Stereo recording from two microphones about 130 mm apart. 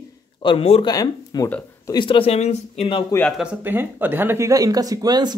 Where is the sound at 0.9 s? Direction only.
30° left (ahead or behind).